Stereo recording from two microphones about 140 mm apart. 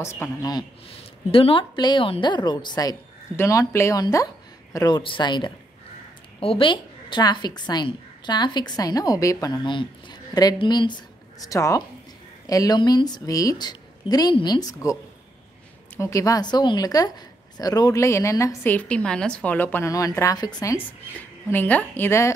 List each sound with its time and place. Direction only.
0.0 s a woman's voice: 20° left (ahead or behind)
1.3 s a woman's voice: 40° left (ahead or behind); by 15.0 s 25° left (ahead or behind)
16.0 s a woman's voice: 20° left (ahead or behind)
21.5 s a woman's voice: 15° left (ahead or behind)